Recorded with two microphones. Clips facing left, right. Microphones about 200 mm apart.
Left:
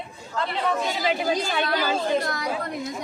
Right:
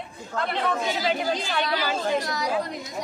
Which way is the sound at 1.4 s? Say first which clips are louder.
Left 2 dB; 50° left (ahead or behind).